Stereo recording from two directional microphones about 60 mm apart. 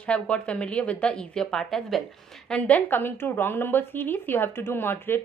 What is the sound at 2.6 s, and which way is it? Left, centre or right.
A woman's voice, left.